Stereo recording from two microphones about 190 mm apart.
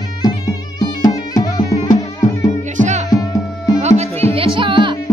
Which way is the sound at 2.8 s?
40° right (ahead or behind).